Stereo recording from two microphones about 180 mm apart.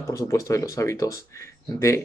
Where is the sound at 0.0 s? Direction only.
15° left (ahead or behind).